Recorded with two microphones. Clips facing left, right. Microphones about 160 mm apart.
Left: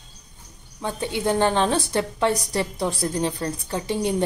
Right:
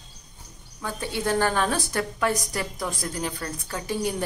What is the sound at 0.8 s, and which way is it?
A woman's voice, 20° left (ahead or behind).